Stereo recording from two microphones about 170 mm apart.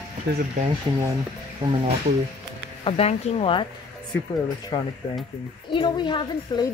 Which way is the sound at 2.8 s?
35° left (ahead or behind).